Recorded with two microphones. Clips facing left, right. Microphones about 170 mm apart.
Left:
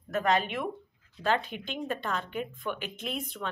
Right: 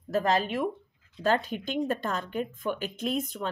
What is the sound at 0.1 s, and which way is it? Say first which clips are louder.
Speech: right 2 dB; 35° right (ahead or behind).